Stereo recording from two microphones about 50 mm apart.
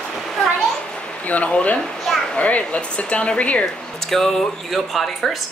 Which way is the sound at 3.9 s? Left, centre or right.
Centre.